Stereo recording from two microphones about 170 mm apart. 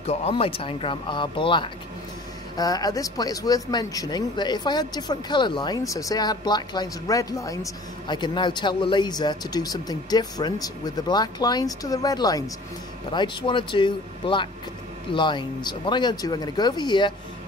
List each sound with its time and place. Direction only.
0.0 s speech: 40° left (ahead or behind)